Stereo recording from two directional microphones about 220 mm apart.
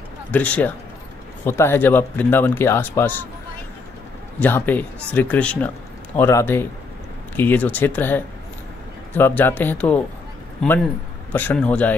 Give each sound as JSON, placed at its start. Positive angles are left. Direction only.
{"t": 0.3, "sound": "speech", "side_deg": 5}
{"t": 4.4, "sound": "speech", "side_deg": 10}
{"t": 11.3, "sound": "speech", "side_deg": 5}